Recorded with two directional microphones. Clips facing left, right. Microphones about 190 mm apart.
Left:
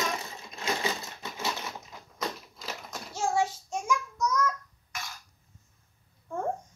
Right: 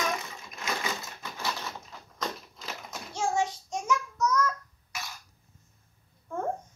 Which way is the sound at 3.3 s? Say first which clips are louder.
Left 3 dB; 10° left (ahead or behind).